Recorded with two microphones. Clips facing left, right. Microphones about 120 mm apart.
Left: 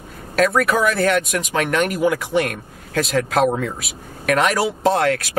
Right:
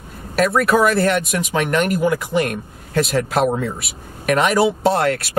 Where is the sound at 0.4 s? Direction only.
5° right (ahead or behind).